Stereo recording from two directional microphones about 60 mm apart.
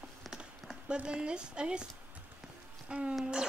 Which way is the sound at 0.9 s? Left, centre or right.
Centre.